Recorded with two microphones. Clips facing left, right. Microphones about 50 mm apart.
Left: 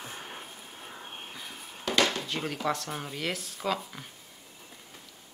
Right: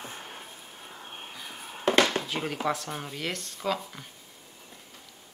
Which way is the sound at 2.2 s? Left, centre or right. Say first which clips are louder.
Right 1 dB; centre.